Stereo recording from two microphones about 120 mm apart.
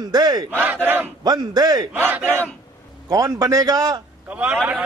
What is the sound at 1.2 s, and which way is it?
Speech, 35° right (ahead or behind).